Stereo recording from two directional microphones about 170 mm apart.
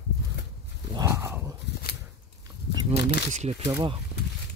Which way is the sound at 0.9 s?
20° right (ahead or behind).